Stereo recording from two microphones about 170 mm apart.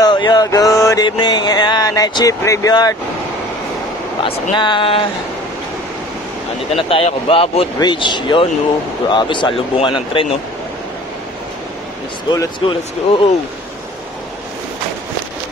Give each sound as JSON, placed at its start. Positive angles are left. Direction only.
{"t": 0.0, "sound": "mantra", "side_deg": 25}
{"t": 4.2, "sound": "speech", "side_deg": 30}
{"t": 6.7, "sound": "speech", "side_deg": 35}
{"t": 12.3, "sound": "speech", "side_deg": 25}